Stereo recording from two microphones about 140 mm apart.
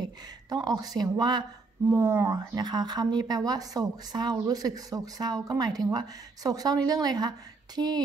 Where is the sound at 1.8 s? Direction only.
20° right (ahead or behind).